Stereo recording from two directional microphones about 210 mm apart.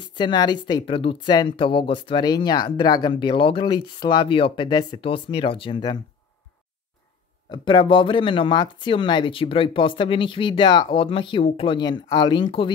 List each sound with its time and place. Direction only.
0.0 s a woman's voice: 20° left (ahead or behind)
7.5 s a woman's voice: 20° left (ahead or behind)